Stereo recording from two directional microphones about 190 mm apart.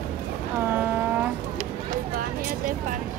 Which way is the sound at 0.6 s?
10° right (ahead or behind).